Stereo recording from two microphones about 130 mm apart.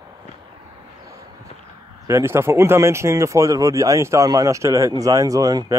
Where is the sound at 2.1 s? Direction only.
20° right (ahead or behind).